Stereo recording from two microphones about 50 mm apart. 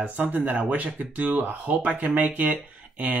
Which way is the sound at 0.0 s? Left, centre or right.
Right.